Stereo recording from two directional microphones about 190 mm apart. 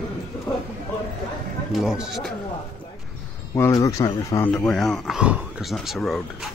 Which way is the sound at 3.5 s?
15° left (ahead or behind).